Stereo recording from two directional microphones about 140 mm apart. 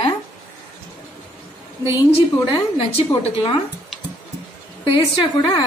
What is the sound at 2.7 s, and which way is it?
Speech, 40° left (ahead or behind).